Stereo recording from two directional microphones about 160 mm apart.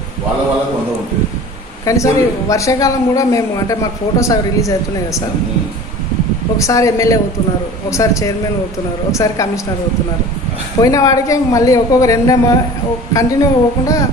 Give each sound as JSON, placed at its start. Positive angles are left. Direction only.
{"t": 1.9, "sound": "a man's voice", "side_deg": 20}
{"t": 6.6, "sound": "a man's voice", "side_deg": 20}
{"t": 10.8, "sound": "a man's voice", "side_deg": 20}